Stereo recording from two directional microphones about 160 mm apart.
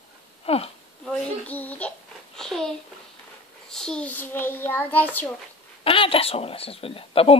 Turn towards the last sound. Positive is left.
turn(degrees=35)  # may be behind; listen again after turning